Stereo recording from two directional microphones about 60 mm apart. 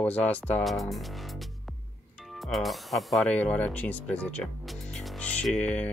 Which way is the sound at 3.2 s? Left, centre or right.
Left.